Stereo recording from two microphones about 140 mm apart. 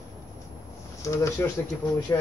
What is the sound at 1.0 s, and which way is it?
Speech, 20° left (ahead or behind).